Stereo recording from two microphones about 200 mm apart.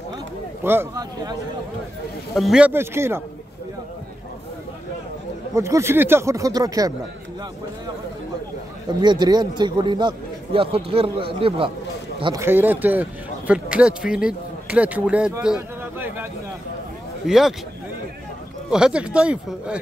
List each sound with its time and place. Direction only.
0.7 s a man's voice: 15° right (ahead or behind)
2.3 s a man's voice: centre (ahead or behind)
5.5 s a man's voice: 15° right (ahead or behind)
9.0 s a man's voice: 20° right (ahead or behind)
12.4 s a man's voice: 10° right (ahead or behind)
17.3 s speech: centre (ahead or behind)
18.7 s speech: 5° right (ahead or behind)